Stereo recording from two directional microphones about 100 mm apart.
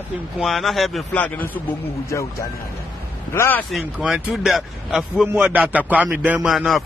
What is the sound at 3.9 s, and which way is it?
A man's voice, 10° right (ahead or behind).